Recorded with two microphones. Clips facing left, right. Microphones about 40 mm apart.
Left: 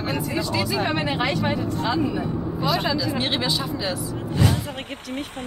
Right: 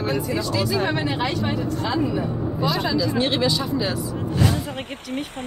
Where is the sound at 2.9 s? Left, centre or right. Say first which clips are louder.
Right 3 dB; centre.